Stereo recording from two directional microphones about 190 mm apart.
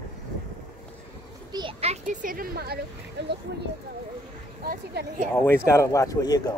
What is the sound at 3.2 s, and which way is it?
Speech, 65° right (ahead or behind).